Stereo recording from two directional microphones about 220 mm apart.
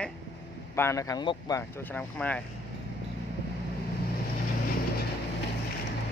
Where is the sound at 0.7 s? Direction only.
15° left (ahead or behind).